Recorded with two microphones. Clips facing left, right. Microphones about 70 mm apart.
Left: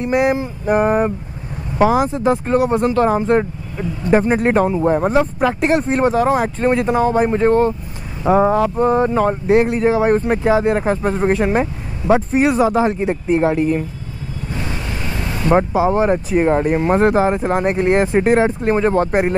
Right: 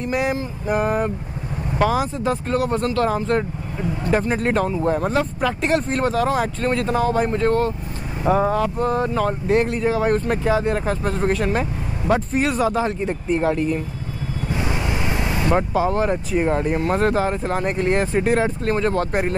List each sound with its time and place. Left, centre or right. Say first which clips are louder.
0.0 s a sound: left 6 dB; left
0.7 s speech: left 6 dB; left
14.5 s vehicle: right 2 dB; centre
15.7 s speech: left 5 dB; centre